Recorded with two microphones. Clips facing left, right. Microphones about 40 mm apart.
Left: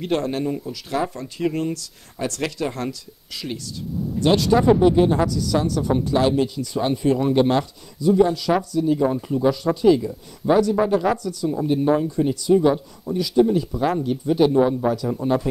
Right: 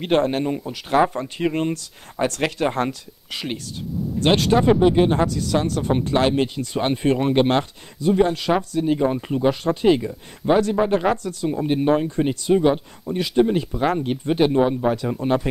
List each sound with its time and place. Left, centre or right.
0.0 s speech: right